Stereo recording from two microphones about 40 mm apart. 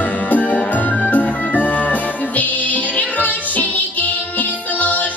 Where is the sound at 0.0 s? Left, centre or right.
Left.